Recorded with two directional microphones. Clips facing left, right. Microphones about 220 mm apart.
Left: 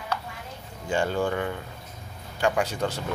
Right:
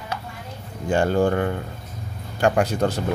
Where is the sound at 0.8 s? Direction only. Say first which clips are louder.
Right 6 dB; 45° right (ahead or behind).